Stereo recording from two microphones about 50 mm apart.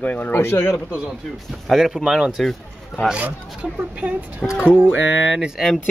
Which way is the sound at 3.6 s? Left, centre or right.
Right.